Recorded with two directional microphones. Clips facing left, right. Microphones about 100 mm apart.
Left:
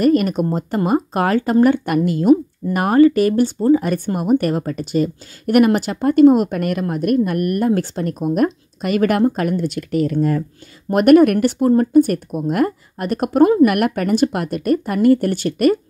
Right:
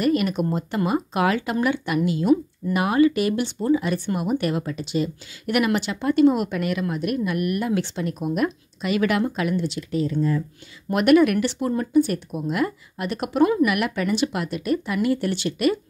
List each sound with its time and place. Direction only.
0.0 s speech: 45° left (ahead or behind); by 10.4 s 70° left (ahead or behind)
10.9 s speech: 45° left (ahead or behind)
13.7 s speech: 50° left (ahead or behind)